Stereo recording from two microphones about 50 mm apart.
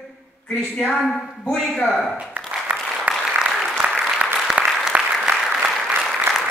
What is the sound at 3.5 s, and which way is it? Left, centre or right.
Applause, centre.